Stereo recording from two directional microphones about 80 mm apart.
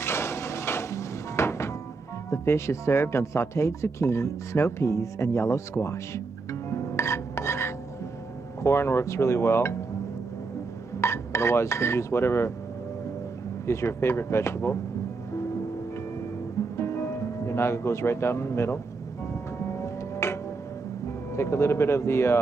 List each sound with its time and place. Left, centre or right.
0.0 s music: left
2.3 s speech: left
11.0 s speech: left
13.7 s speech: left
16.7 s music: left
19.8 s music: left
21.4 s speech: left